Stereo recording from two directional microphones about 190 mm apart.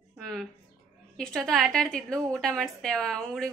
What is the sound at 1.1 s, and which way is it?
A woman's voice, 5° left (ahead or behind).